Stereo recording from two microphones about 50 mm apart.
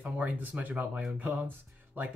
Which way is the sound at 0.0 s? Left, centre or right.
Right.